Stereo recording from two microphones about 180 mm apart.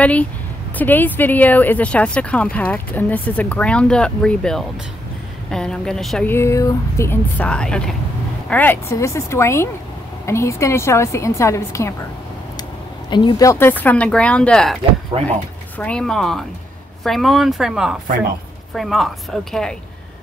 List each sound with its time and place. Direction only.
0.0 s speech: 10° left (ahead or behind)
13.1 s speech: 25° left (ahead or behind); by 14.8 s 5° left (ahead or behind)
15.1 s speech: 30° right (ahead or behind)
15.8 s speech: 5° left (ahead or behind)